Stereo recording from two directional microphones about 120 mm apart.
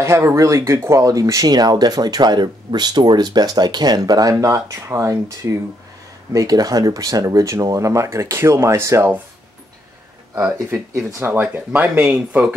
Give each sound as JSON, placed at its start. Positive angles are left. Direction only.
{"t": 0.0, "sound": "speech", "side_deg": -25}
{"t": 10.3, "sound": "speech", "side_deg": -25}